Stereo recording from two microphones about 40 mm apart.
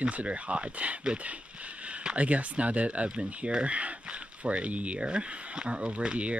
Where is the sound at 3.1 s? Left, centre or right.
Right.